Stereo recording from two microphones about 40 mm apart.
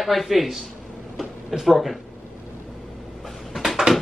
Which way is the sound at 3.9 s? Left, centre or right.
Right.